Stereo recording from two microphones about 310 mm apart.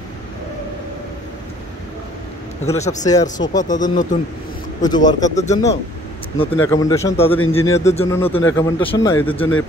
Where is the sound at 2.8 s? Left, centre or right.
Left.